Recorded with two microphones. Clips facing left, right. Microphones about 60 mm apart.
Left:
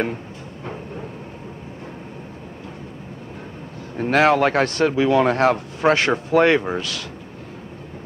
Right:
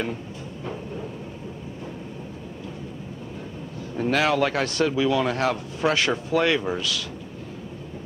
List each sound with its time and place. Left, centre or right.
3.9 s speech: left